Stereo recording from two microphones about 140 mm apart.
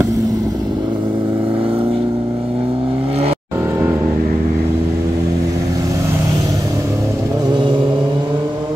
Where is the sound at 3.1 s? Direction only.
45° right (ahead or behind).